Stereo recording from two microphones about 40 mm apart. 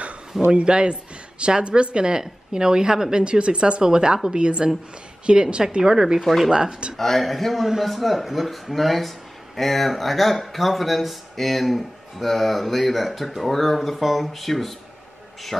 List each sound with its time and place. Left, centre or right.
0.5 s a woman's voice: right
6.2 s speech: centre
6.5 s a woman's voice: centre
7.0 s speech: centre